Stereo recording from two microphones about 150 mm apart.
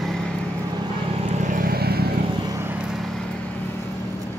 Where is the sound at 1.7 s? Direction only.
90° right.